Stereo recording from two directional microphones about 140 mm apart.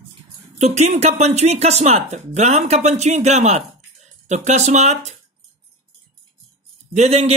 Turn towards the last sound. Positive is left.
turn(degrees=-50)  # may be behind; listen again after turning